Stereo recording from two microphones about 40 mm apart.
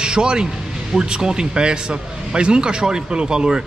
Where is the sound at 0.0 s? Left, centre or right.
Right.